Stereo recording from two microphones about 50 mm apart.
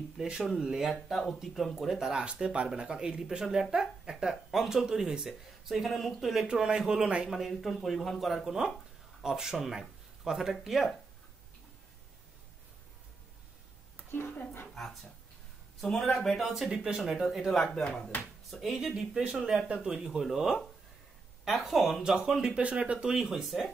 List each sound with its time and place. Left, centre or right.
0.2 s speech: centre
6.4 s speech: centre
7.2 s speech: centre
14.1 s speech: left
15.8 s speech: centre
16.5 s speech: centre
22.5 s speech: right
23.0 s speech: centre